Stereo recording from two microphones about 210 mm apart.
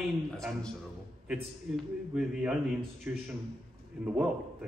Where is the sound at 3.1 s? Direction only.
10° right (ahead or behind).